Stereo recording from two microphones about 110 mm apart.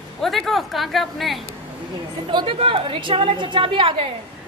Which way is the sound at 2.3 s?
50° right (ahead or behind).